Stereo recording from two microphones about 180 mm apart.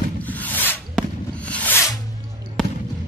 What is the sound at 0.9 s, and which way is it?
Fireworks, 5° left (ahead or behind).